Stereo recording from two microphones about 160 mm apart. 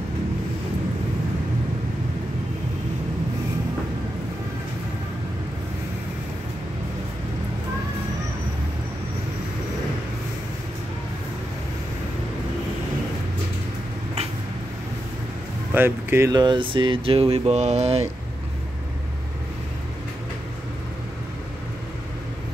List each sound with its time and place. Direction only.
15.7 s speech: 15° right (ahead or behind); by 18.0 s 45° right (ahead or behind)